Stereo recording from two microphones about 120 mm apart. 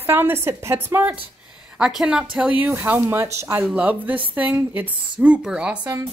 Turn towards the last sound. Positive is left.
turn(degrees=-10)  # may be behind; listen again after turning